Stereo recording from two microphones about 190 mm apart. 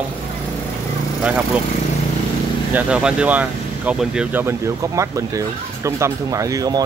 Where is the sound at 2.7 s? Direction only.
5° right (ahead or behind).